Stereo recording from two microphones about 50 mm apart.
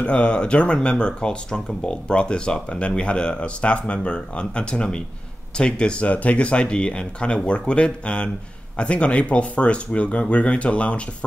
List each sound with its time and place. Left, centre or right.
0.0 s speech: left